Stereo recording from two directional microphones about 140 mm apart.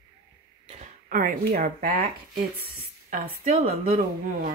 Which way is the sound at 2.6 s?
70° right (ahead or behind).